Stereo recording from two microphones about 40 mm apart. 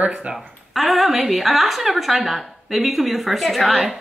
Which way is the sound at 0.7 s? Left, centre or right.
Centre.